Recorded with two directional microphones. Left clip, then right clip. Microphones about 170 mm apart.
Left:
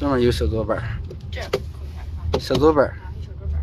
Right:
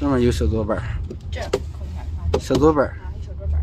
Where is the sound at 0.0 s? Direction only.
15° right (ahead or behind).